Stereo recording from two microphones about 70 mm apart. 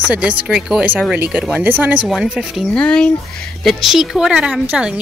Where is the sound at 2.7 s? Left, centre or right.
Centre.